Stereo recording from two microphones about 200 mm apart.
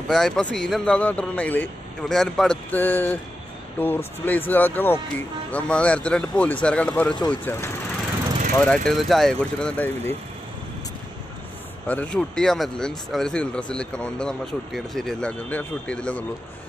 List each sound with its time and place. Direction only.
0.1 s speech: 5° left (ahead or behind)
11.9 s speech: 5° left (ahead or behind)